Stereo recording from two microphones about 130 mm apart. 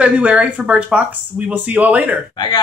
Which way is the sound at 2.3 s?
35° left (ahead or behind).